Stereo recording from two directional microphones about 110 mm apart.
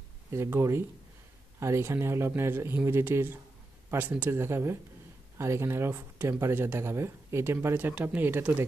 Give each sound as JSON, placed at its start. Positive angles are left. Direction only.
{"t": 0.3, "sound": "speech", "side_deg": -25}